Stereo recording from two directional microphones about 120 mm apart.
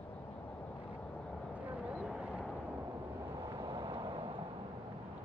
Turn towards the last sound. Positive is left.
turn(degrees=-45)  # may be behind; listen again after turning